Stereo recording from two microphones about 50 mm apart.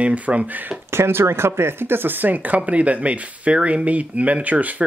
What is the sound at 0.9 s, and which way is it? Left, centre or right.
Speech, right.